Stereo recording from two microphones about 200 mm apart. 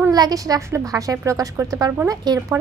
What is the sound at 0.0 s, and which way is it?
A woman's voice, 20° right (ahead or behind).